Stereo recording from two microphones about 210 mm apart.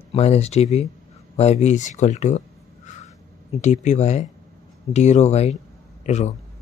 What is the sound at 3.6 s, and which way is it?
A man's voice, 35° left (ahead or behind).